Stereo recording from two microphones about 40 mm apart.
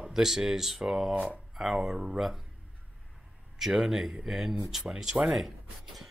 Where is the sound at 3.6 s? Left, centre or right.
Centre.